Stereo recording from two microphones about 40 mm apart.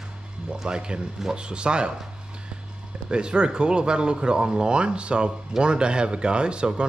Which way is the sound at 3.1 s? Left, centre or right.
Right.